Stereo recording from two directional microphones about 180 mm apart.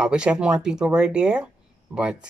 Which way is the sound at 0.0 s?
5° right (ahead or behind).